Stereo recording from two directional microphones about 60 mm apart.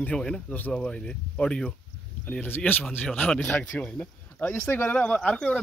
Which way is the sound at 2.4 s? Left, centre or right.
Left.